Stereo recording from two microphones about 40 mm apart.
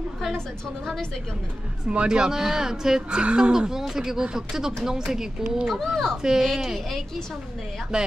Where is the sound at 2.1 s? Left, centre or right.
Centre.